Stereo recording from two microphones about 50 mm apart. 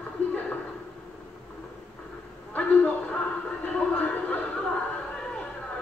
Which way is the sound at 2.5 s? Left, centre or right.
Left.